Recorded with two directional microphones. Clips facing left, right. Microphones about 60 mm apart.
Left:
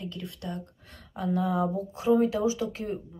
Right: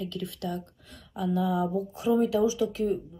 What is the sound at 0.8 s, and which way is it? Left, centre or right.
Speech, left.